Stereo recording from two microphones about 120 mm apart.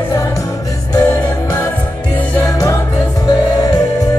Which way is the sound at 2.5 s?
30° left (ahead or behind).